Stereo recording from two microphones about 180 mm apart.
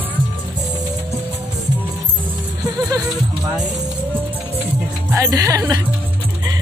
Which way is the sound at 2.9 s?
20° right (ahead or behind).